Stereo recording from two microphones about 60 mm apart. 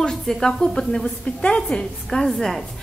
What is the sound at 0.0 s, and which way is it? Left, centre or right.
A woman's voice, centre.